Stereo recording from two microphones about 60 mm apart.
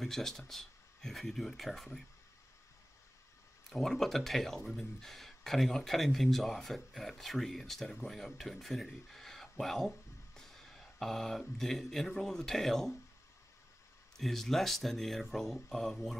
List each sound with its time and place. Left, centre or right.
0.0 s speech: centre
3.7 s speech: centre
14.1 s speech: centre